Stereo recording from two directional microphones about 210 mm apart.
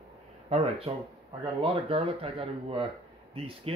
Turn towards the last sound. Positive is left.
turn(degrees=-30)  # may be behind; listen again after turning